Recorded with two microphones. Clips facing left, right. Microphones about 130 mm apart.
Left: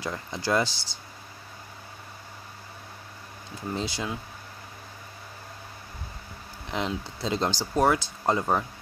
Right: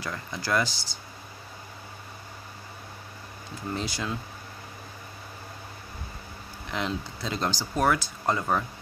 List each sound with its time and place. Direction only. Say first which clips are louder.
0.0 s speech: left 3 dB; 25° left (ahead or behind)
3.7 s speech: left 1 dB; 20° left (ahead or behind)
6.7 s speech: left 1 dB; 20° left (ahead or behind)